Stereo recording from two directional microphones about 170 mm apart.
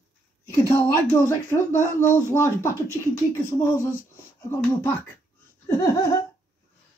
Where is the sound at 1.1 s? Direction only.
15° left (ahead or behind).